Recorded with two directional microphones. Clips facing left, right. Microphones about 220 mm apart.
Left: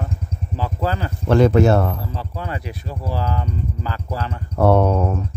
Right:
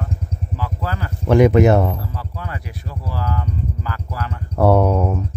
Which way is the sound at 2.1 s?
25° left (ahead or behind).